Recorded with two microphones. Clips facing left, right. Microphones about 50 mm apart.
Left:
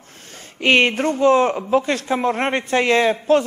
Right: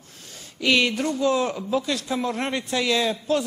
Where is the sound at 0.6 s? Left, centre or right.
Left.